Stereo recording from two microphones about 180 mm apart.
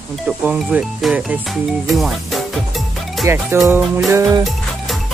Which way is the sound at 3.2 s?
15° right (ahead or behind).